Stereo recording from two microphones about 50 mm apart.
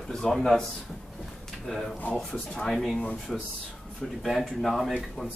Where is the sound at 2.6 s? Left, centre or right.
Centre.